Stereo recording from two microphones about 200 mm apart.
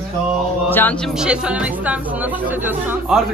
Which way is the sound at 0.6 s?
10° left (ahead or behind).